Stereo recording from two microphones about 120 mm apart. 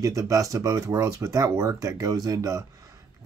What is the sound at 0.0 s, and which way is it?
Speech, 25° right (ahead or behind).